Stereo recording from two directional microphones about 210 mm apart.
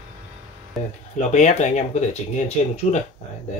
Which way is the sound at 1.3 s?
35° left (ahead or behind).